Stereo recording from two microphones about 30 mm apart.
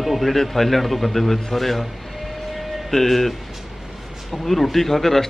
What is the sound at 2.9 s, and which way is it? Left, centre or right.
Speech, centre.